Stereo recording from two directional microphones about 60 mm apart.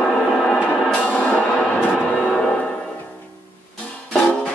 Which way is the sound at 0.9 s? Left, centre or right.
Centre.